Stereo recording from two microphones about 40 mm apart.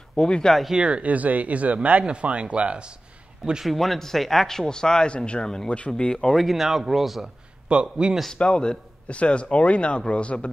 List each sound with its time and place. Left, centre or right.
0.1 s speech: centre
0.7 s speech: right
3.6 s speech: centre
6.3 s speech: centre
7.6 s a man's voice: right
8.4 s speech: left